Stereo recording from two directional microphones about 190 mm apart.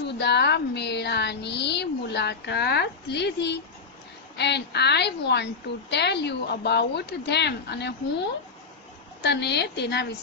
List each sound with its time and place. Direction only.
0.0 s a woman's voice: 60° left (ahead or behind)
9.2 s a woman's voice: 60° left (ahead or behind)